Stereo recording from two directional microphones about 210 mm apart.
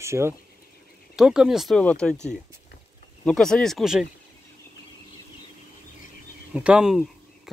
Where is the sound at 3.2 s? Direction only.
5° left (ahead or behind).